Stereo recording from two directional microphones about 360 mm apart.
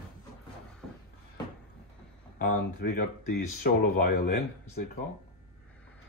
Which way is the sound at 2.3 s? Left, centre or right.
Left.